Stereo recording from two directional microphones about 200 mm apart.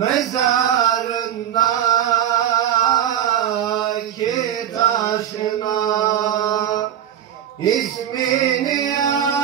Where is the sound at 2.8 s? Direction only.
20° left (ahead or behind).